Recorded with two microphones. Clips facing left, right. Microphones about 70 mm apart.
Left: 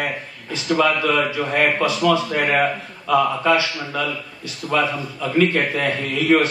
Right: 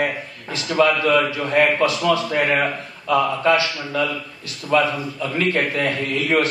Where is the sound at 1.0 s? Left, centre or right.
Left.